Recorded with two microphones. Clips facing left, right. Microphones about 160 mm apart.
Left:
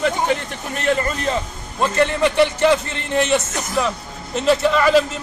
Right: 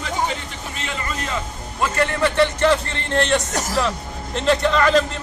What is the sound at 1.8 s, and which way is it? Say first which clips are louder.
Speech: left 3 dB; 20° left (ahead or behind).